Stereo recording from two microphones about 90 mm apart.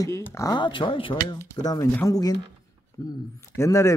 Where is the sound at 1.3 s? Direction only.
45° left (ahead or behind).